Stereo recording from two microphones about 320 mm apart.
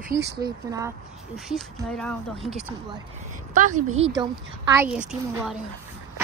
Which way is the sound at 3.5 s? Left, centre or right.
Right.